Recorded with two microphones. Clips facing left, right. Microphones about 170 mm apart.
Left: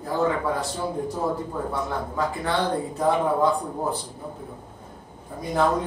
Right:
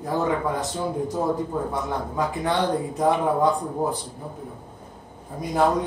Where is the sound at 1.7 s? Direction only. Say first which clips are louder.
Right 1 dB; 15° right (ahead or behind).